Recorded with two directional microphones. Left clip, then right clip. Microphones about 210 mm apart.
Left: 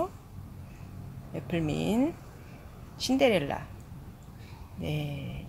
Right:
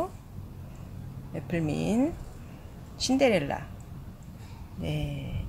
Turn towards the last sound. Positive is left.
turn(degrees=15)  # may be behind; listen again after turning